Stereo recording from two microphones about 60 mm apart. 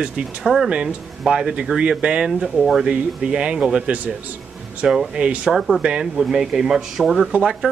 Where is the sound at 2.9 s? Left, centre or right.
Centre.